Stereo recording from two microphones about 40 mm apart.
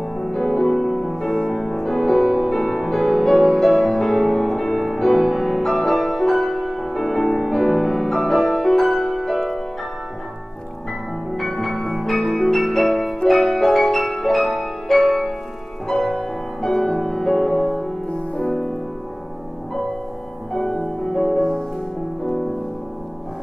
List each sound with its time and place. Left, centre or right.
0.2 s music: centre
0.7 s music: centre
1.1 s music: centre
1.5 s music: centre
2.2 s music: centre
2.5 s music: centre
11.3 s music: centre
18.1 s music: left
20.5 s music: centre
21.4 s music: centre